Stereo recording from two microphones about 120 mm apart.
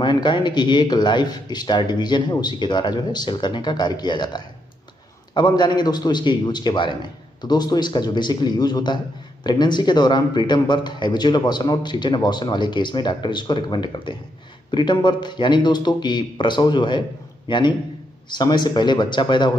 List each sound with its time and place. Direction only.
0.0 s a man's voice: 40° left (ahead or behind)